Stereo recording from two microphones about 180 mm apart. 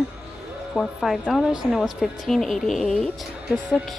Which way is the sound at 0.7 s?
Centre (ahead or behind).